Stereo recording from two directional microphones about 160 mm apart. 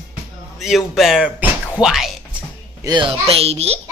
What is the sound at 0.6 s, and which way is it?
Speech, centre (ahead or behind).